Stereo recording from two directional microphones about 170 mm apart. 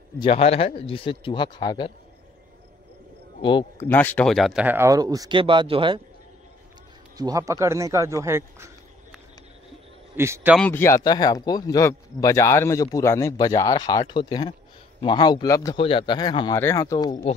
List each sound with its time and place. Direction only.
0.2 s speech: 35° left (ahead or behind)
3.8 s speech: 10° left (ahead or behind)
4.6 s speech: 15° right (ahead or behind)
7.2 s speech: 20° right (ahead or behind)
10.1 s speech: 15° right (ahead or behind)
10.6 s speech: 15° left (ahead or behind)